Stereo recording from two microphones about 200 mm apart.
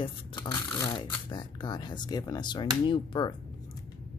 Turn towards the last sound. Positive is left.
turn(degrees=25)  # may be behind; listen again after turning